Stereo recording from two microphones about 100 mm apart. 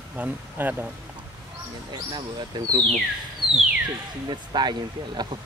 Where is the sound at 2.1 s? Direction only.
45° right (ahead or behind).